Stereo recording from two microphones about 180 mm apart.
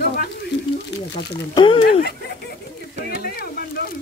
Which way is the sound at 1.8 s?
65° left (ahead or behind).